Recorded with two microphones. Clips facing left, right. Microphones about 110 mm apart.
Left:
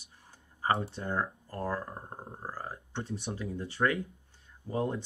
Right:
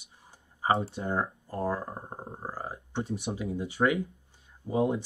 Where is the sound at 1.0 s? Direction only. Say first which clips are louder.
Even; 25° right (ahead or behind).